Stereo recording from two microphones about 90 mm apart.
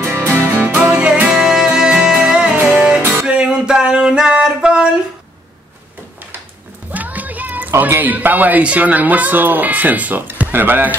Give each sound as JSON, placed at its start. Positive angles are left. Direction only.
{"t": 0.0, "sound": "music", "side_deg": -25}
{"t": 3.3, "sound": "a sound", "side_deg": -10}
{"t": 6.9, "sound": "music", "side_deg": -20}
{"t": 7.8, "sound": "speech", "side_deg": -20}